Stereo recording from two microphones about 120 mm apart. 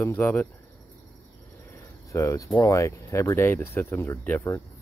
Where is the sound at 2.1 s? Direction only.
25° left (ahead or behind).